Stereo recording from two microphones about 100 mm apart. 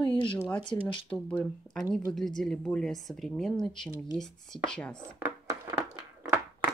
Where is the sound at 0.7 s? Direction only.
40° left (ahead or behind).